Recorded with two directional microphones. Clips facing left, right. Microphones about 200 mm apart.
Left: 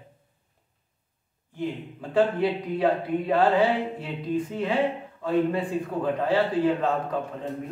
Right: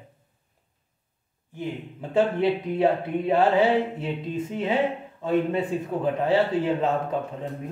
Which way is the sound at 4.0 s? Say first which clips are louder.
Left 1 dB; 25° right (ahead or behind).